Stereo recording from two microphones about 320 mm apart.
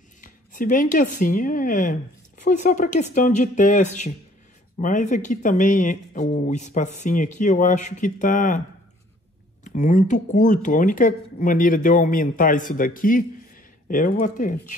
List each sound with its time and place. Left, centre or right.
0.2 s speech: left
9.7 s speech: left